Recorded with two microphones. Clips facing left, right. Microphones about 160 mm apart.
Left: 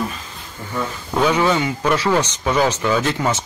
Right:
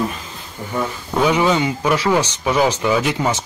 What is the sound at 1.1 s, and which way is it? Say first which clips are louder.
Speech: right 1 dB; 10° right (ahead or behind).